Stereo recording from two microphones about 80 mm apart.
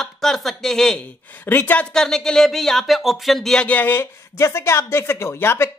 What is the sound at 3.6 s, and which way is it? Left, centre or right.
Speech, left.